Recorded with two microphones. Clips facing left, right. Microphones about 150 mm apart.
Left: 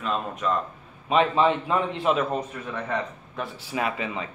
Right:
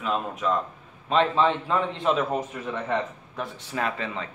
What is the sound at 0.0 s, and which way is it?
Speech, centre (ahead or behind).